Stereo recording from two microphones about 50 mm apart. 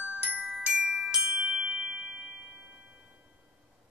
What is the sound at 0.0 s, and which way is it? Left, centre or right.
Glockenspiel, right.